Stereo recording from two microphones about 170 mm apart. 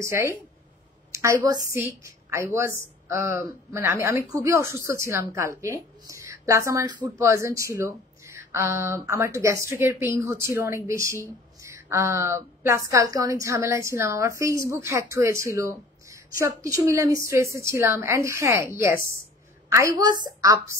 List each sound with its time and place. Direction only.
0.0 s a woman's voice: 15° right (ahead or behind)
1.4 s a woman's voice: 20° right (ahead or behind)